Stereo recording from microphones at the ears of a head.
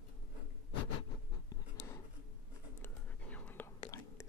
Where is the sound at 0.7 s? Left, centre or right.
Left.